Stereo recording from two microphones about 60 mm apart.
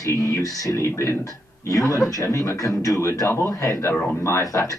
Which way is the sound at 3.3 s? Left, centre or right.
Left.